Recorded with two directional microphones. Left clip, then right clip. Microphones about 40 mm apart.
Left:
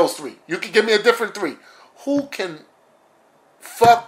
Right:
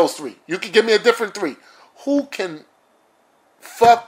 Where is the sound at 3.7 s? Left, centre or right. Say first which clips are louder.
Right 1 dB; right.